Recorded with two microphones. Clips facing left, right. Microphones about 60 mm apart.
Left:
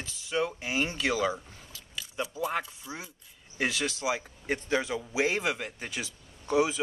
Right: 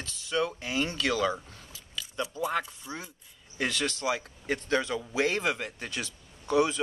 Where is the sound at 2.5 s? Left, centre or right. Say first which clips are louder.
Right 1 dB; centre.